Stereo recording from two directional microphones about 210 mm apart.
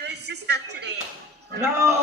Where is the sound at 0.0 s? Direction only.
55° right (ahead or behind).